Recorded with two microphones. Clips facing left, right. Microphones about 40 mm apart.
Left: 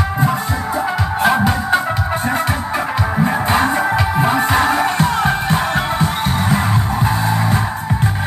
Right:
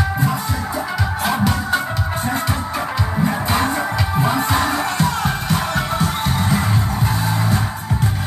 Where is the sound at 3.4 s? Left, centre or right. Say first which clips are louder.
Left 4 dB; left.